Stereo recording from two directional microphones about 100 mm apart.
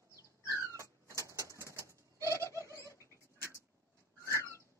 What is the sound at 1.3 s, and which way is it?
Bird, 30° right (ahead or behind).